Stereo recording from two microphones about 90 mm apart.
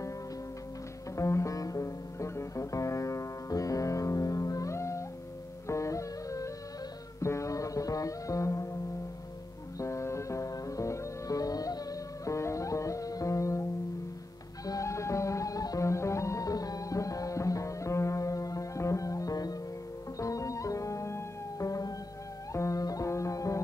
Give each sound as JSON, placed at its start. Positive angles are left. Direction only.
{"t": 1.1, "sound": "music", "side_deg": 35}
{"t": 9.8, "sound": "music", "side_deg": 35}
{"t": 14.7, "sound": "music", "side_deg": 35}